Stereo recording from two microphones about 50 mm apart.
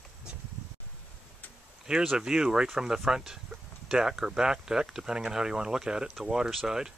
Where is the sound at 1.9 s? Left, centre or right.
Centre.